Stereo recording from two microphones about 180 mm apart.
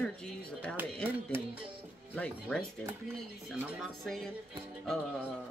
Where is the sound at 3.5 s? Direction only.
5° right (ahead or behind).